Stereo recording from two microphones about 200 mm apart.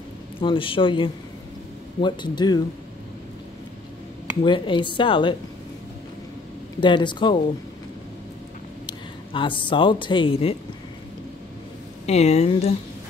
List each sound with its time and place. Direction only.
0.4 s speech: 25° left (ahead or behind)
4.4 s speech: 25° left (ahead or behind)
6.8 s speech: 25° left (ahead or behind)
8.8 s speech: 25° left (ahead or behind)
12.1 s speech: 35° left (ahead or behind)